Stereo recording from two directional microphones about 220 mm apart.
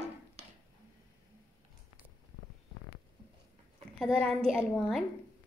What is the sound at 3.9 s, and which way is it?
A woman's voice, 5° left (ahead or behind).